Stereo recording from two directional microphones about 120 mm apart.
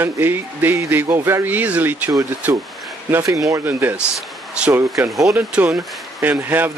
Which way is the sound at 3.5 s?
15° right (ahead or behind).